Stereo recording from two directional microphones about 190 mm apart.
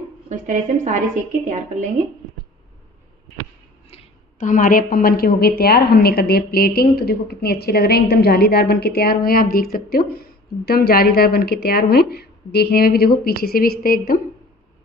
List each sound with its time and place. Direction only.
0.3 s a woman's voice: 40° right (ahead or behind)
3.9 s a woman's voice: 45° left (ahead or behind)